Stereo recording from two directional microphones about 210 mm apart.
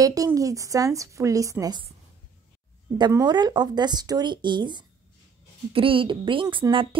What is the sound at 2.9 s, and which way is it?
Speech, 20° right (ahead or behind).